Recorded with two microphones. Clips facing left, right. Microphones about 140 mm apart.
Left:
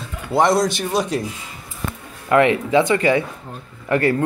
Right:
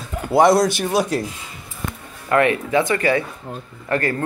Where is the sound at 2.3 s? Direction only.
20° left (ahead or behind).